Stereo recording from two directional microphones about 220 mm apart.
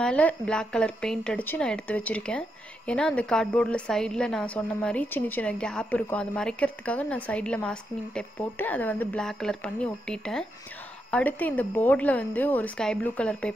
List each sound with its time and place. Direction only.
0.0 s a woman's voice: 5° left (ahead or behind)